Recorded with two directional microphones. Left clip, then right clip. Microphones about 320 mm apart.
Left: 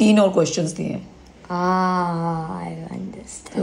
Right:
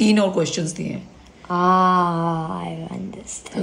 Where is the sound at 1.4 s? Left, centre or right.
Centre.